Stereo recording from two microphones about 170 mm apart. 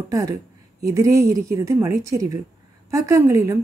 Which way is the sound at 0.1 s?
20° right (ahead or behind).